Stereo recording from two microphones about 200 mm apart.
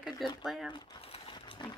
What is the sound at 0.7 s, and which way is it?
Crumpling, 20° left (ahead or behind).